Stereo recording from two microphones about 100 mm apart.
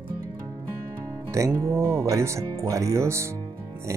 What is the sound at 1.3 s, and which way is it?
Speech, 30° right (ahead or behind).